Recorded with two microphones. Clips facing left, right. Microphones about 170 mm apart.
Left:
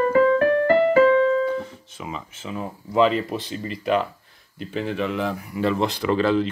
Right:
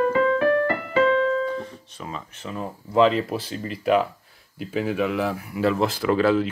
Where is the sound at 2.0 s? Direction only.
5° left (ahead or behind).